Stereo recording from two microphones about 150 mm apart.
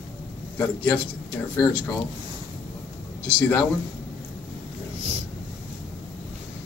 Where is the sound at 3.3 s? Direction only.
10° left (ahead or behind).